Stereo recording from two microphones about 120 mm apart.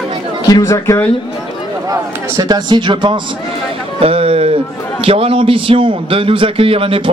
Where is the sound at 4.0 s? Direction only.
50° right (ahead or behind).